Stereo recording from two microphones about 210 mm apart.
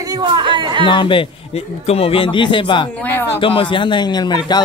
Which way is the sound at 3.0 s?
10° left (ahead or behind).